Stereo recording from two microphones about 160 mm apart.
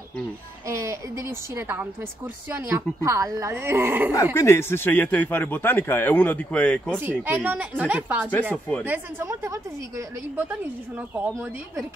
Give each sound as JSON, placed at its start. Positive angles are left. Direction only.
{"t": 0.7, "sound": "a woman's voice", "side_deg": -20}
{"t": 4.1, "sound": "speech", "side_deg": 20}
{"t": 7.0, "sound": "a woman's voice", "side_deg": -15}